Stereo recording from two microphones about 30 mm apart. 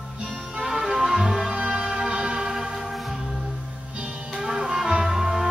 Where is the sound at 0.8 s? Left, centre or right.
Centre.